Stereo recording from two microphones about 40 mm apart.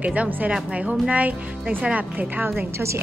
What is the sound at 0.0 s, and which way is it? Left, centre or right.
Speech, right.